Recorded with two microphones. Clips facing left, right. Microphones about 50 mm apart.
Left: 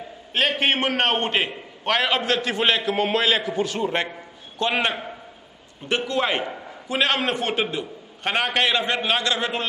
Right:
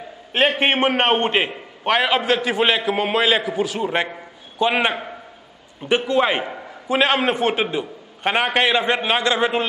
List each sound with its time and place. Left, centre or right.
0.3 s a man's voice: right